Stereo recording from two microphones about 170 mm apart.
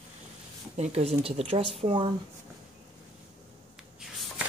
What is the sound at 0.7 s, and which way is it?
Speech, 40° right (ahead or behind).